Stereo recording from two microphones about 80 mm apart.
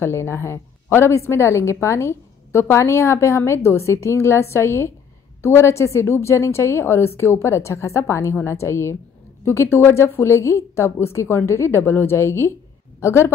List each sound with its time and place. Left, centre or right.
0.0 s a woman's voice: left